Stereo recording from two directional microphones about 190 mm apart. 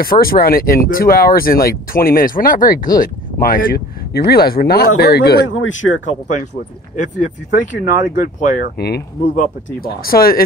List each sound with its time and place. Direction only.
0.0 s speech: 50° left (ahead or behind)
5.5 s speech: 90° left
7.0 s speech: 40° left (ahead or behind)
9.2 s speech: 40° left (ahead or behind)